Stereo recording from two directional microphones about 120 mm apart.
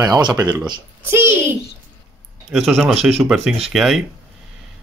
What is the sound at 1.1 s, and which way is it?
Speech, 20° right (ahead or behind).